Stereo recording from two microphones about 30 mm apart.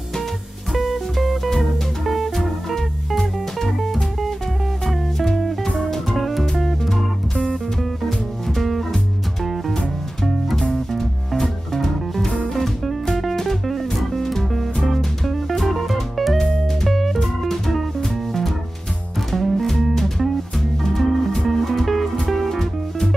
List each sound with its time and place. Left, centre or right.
0.9 s music: centre
8.5 s music: centre
10.7 s music: centre
16.3 s music: centre
16.9 s music: centre
20.9 s music: centre